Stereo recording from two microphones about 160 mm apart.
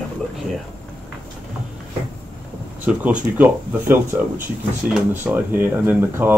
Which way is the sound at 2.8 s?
10° right (ahead or behind).